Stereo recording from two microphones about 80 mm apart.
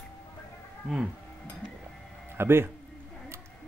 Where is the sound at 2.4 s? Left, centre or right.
Right.